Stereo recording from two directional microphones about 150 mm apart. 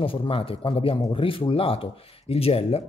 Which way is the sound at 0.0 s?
35° left (ahead or behind).